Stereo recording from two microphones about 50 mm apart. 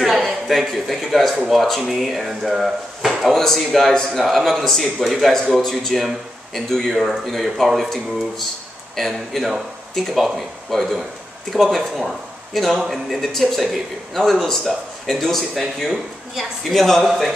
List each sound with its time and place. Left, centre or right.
0.0 s a man's voice: centre